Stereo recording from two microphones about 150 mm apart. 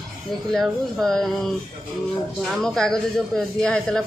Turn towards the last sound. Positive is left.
turn(degrees=5)  # may be behind; listen again after turning